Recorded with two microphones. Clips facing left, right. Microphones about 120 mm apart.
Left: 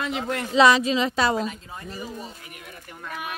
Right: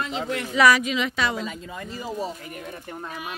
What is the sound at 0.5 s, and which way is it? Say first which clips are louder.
Speech: left 2 dB; 25° left (ahead or behind).